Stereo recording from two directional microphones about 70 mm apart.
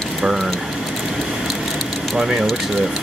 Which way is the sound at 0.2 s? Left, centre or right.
Centre.